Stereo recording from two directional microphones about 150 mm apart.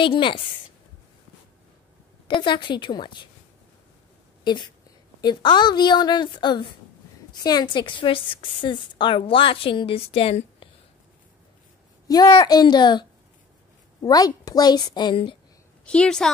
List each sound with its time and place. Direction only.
0.0 s a woman's voice: 35° left (ahead or behind)
2.2 s a woman's voice: 30° left (ahead or behind)
5.2 s a woman's voice: 30° left (ahead or behind)
12.1 s a woman's voice: 25° left (ahead or behind)
14.0 s a woman's voice: 25° left (ahead or behind)
15.8 s a woman's voice: 5° left (ahead or behind)